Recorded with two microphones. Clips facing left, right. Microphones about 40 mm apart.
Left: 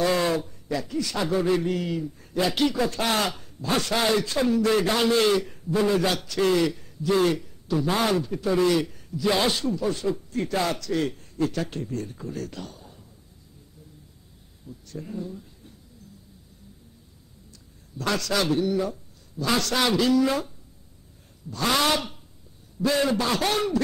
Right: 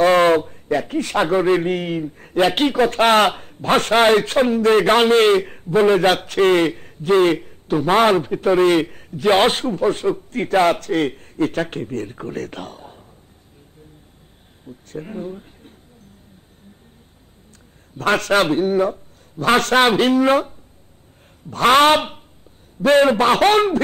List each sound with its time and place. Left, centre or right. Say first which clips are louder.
0.0 s a man's voice: right 10 dB; right
14.7 s speech: right 5 dB; right
17.9 s a man's voice: right 9 dB; right